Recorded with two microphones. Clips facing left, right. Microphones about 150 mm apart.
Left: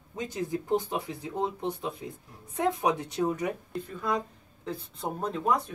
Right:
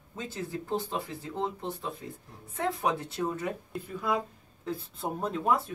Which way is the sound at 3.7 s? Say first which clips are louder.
Even; 5° right (ahead or behind).